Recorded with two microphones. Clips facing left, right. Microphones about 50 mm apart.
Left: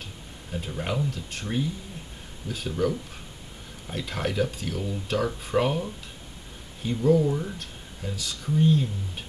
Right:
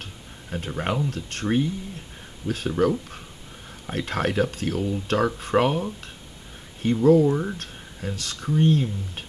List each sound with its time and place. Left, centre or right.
0.0 s a sound: right
1.1 s speech: right
7.2 s speech: right
7.5 s speech: right